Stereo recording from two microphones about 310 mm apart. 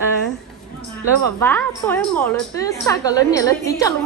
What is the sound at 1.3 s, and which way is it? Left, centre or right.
A woman's voice, centre.